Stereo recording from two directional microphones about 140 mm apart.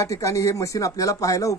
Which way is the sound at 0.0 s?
20° left (ahead or behind).